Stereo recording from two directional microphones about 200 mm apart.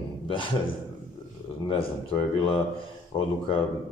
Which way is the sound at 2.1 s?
25° left (ahead or behind).